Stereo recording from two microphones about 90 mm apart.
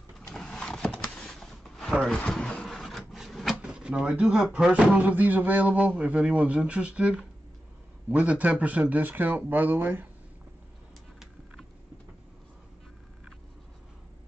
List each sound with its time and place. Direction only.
0.3 s a sound: 5° left (ahead or behind)
2.0 s printer: 10° left (ahead or behind)
3.7 s speech: 10° right (ahead or behind)